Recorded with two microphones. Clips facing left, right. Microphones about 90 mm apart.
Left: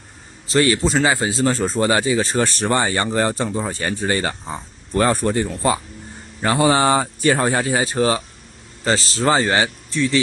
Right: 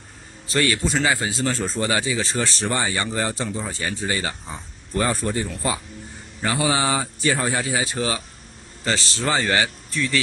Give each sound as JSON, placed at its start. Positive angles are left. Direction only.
{"t": 0.5, "sound": "a man's voice", "side_deg": 30}
{"t": 6.4, "sound": "a man's voice", "side_deg": 50}